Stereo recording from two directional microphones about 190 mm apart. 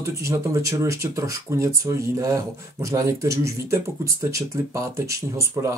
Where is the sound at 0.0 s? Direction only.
15° right (ahead or behind).